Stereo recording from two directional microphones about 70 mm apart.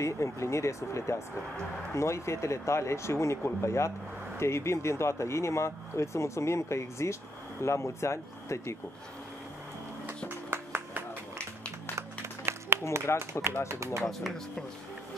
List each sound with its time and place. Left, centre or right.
0.0 s speech: left
10.0 s music: right
12.4 s a sound: right
13.3 s speech: right
14.0 s speech: centre